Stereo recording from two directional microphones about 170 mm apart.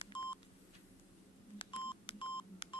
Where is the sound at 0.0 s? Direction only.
30° left (ahead or behind).